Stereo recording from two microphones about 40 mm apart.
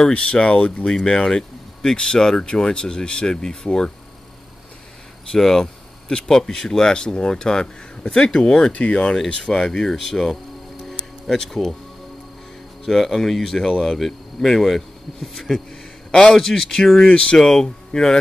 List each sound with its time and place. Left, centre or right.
0.1 s speech: left
5.3 s speech: centre
8.7 s speech: left
9.4 s speech: centre
10.8 s music: centre
12.8 s speech: centre
17.1 s speech: left
17.4 s speech: centre